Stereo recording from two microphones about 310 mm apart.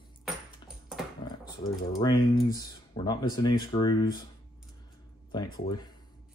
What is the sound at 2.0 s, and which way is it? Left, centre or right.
Speech, centre.